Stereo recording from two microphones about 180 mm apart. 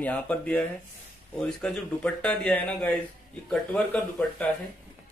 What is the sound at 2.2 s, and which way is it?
Speech, 5° left (ahead or behind).